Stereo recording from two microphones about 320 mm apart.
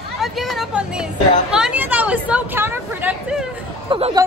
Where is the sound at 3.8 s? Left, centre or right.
Centre.